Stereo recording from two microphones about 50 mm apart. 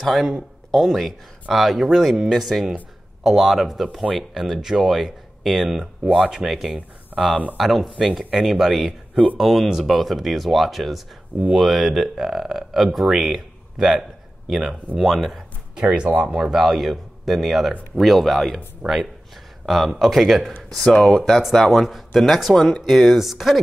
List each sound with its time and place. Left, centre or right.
0.0 s speech: centre
15.7 s speech: centre
18.8 s speech: right
19.6 s speech: centre